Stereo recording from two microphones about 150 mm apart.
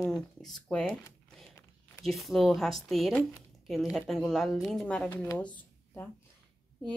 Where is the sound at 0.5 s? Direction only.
5° left (ahead or behind).